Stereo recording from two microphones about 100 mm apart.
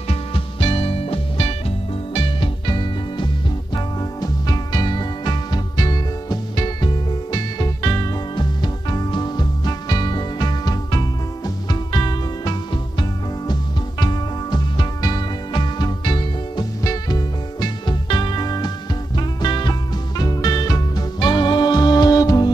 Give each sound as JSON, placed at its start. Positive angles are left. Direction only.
{"t": 0.1, "sound": "music", "side_deg": 65}
{"t": 2.1, "sound": "music", "side_deg": 55}
{"t": 8.4, "sound": "music", "side_deg": 50}